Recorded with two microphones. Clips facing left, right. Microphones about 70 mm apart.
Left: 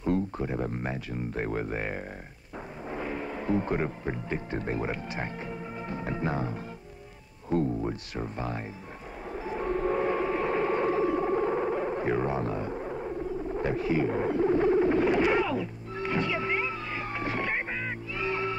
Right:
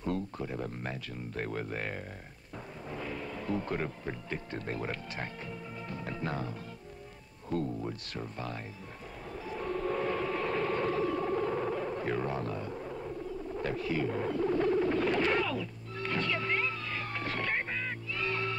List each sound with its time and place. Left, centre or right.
0.0 s speech: centre
9.3 s whale vocalization: left